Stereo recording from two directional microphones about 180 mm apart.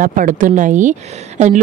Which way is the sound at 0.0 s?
50° right (ahead or behind).